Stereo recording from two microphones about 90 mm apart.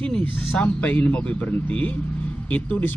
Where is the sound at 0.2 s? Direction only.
20° left (ahead or behind).